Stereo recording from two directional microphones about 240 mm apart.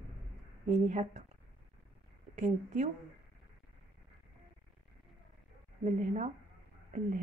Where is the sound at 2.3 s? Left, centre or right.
Right.